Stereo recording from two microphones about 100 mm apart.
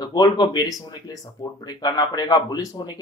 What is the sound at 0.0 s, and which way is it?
Speech, 45° left (ahead or behind).